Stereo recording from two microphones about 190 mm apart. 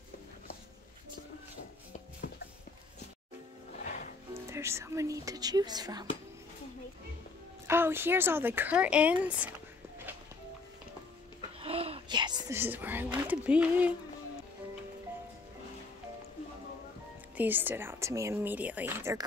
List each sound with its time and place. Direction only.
2.2 s a sound: 60° left (ahead or behind)
4.3 s speech: 15° right (ahead or behind)
7.6 s speech: 10° right (ahead or behind)
11.6 s speech: 30° right (ahead or behind); by 13.9 s 5° right (ahead or behind)
17.4 s speech: 10° right (ahead or behind)